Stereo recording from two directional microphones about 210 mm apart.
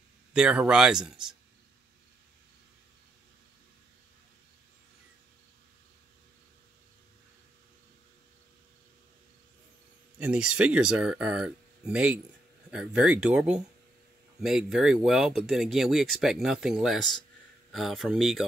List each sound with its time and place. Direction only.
0.3 s speech: 5° right (ahead or behind)
10.1 s speech: 5° right (ahead or behind)